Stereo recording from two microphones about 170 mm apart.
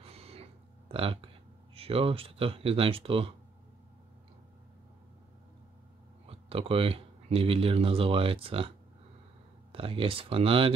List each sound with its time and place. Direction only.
0.0 s a sound: 35° right (ahead or behind)
0.9 s speech: 30° right (ahead or behind)
6.2 s speech: 35° right (ahead or behind)